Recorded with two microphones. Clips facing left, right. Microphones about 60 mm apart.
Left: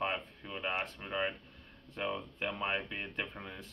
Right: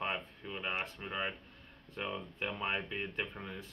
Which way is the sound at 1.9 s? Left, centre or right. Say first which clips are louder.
Left 3 dB; centre.